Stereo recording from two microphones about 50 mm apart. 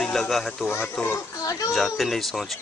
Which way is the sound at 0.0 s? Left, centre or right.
Centre.